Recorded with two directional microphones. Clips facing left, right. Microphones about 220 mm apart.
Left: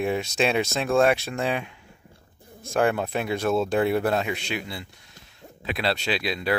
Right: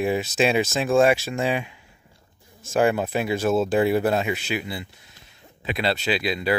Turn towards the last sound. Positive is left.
turn(degrees=0)  # may be behind; listen again after turning